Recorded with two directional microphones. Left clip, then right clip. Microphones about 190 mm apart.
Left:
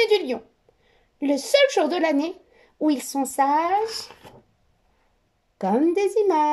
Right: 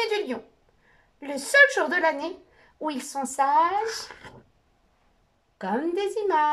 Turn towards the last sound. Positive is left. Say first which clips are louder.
# left 4 dB
turn(degrees=30)  # may be behind; listen again after turning